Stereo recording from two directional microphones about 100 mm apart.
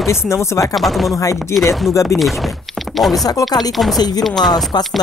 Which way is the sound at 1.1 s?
35° left (ahead or behind).